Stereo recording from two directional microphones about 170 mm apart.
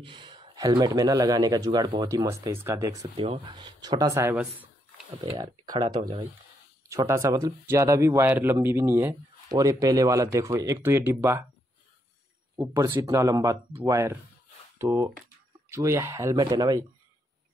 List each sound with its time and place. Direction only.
0.0 s speech: 30° right (ahead or behind)
3.2 s speech: 30° right (ahead or behind)
4.4 s a sound: 5° right (ahead or behind)
5.2 s speech: 25° right (ahead or behind)
12.5 s speech: 15° right (ahead or behind)